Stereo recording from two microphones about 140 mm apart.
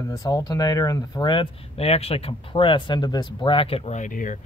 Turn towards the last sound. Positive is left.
turn(degrees=65)  # may be behind; listen again after turning